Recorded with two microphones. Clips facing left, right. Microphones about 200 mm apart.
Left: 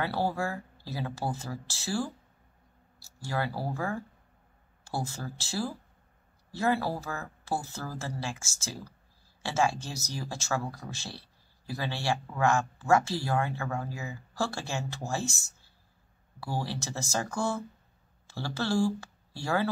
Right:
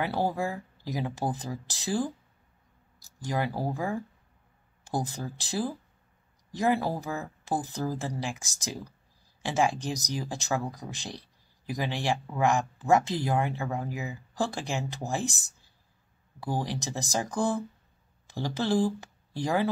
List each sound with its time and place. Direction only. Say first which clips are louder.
0.0 s speech: right 2 dB; 15° right (ahead or behind)